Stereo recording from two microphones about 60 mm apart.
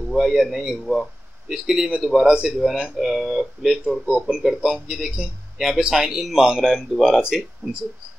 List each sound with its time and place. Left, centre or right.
0.1 s speech: centre